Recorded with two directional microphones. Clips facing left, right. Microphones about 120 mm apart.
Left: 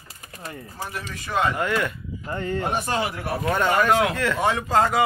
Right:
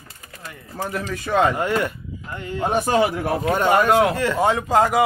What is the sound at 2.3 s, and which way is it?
Speech, 40° left (ahead or behind).